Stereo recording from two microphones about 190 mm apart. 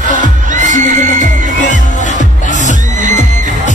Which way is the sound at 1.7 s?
40° left (ahead or behind).